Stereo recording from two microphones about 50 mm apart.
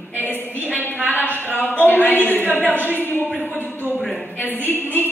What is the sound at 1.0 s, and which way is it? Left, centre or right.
Speech, left.